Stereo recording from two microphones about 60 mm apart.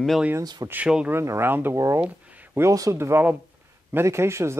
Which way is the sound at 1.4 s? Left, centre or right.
Right.